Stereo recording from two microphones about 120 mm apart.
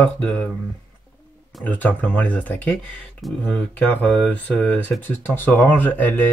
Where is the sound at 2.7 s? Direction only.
Centre (ahead or behind).